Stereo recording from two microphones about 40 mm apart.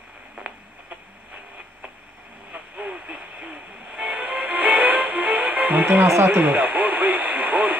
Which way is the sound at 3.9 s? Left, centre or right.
Right.